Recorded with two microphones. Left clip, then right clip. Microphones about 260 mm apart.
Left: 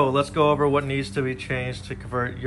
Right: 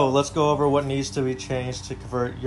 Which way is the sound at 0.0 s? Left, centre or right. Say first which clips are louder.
Even; centre.